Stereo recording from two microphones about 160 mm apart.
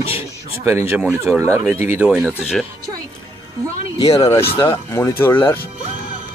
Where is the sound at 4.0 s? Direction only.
25° left (ahead or behind).